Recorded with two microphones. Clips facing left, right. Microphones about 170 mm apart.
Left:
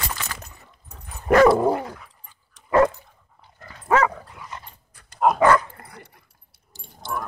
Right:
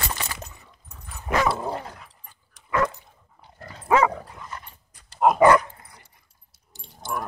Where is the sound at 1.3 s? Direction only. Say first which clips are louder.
Left 9 dB; 60° left (ahead or behind).